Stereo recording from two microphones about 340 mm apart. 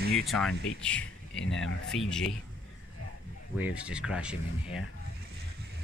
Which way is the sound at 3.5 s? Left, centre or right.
Centre.